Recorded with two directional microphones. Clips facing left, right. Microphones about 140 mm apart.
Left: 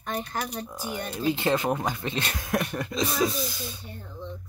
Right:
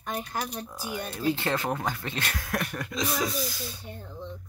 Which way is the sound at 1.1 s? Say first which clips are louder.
Left 3 dB; 20° left (ahead or behind).